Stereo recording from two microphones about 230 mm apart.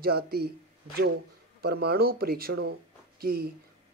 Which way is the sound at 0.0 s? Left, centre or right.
Right.